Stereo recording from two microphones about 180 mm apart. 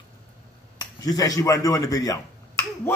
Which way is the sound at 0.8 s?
20° left (ahead or behind).